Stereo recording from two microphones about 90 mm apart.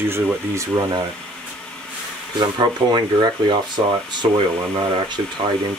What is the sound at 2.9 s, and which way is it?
Speech, 55° right (ahead or behind).